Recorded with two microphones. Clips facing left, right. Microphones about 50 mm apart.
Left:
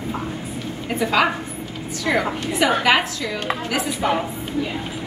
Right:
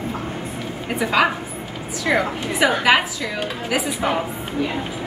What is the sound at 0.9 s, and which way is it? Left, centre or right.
A woman's voice, centre.